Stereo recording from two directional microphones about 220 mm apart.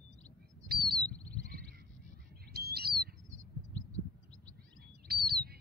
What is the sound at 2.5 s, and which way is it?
Bird, 45° right (ahead or behind).